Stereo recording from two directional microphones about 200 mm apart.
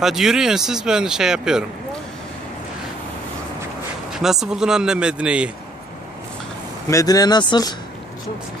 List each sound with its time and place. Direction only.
0.0 s speech: centre (ahead or behind)
4.1 s speech: centre (ahead or behind)
6.9 s speech: 15° left (ahead or behind)